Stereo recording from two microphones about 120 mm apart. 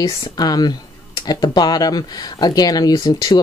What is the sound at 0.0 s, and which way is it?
Speech, 35° left (ahead or behind).